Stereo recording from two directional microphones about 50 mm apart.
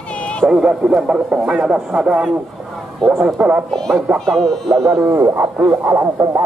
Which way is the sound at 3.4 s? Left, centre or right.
Right.